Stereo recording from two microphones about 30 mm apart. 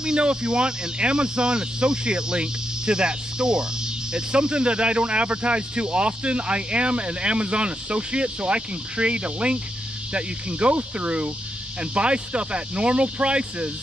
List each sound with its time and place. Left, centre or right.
0.0 s speech: right